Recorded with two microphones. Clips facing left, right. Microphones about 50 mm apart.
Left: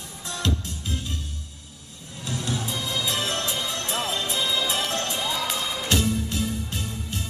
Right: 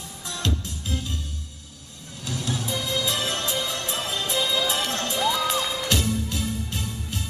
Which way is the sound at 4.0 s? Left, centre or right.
Centre.